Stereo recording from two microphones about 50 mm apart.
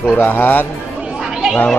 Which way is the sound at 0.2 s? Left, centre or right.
Left.